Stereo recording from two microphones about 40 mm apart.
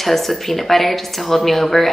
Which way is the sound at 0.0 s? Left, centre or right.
Centre.